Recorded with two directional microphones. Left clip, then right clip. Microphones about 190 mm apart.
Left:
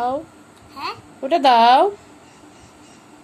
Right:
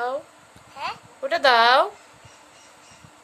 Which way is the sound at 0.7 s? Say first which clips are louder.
Left 2 dB; 20° right (ahead or behind).